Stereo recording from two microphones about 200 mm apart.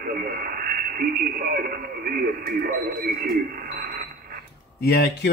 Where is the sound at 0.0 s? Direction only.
45° right (ahead or behind).